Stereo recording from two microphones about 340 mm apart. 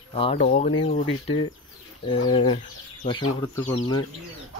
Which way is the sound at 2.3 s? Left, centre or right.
Centre.